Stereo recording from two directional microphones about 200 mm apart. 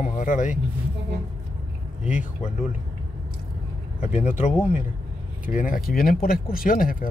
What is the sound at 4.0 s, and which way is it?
Speech, 40° left (ahead or behind).